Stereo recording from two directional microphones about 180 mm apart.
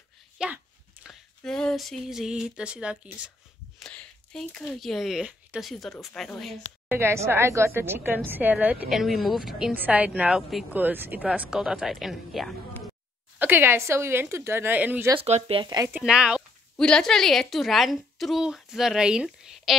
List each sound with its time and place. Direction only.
1.0 s speech: 5° left (ahead or behind)
3.8 s speech: 5° left (ahead or behind)
6.9 s a woman's voice: 15° right (ahead or behind)
13.4 s a woman's voice: 10° right (ahead or behind)
15.1 s speech: 35° right (ahead or behind)
15.9 s a sound: 5° right (ahead or behind)
16.8 s a woman's voice: 5° left (ahead or behind)